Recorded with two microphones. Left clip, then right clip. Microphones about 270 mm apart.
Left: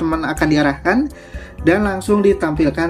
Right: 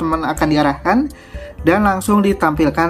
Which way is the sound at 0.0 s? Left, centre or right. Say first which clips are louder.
Right 1 dB; centre.